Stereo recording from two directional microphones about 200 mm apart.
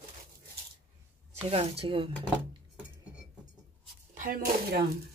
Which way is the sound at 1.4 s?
30° right (ahead or behind).